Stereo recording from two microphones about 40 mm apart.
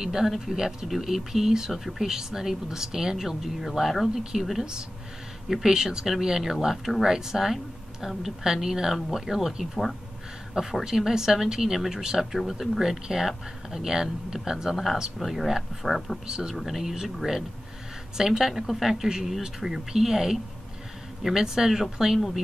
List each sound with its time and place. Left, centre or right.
0.0 s speech: centre
16.3 s speech: centre
16.6 s speech: centre
18.1 s speech: centre